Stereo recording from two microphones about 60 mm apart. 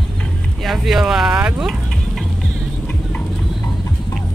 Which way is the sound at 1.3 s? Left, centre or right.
Right.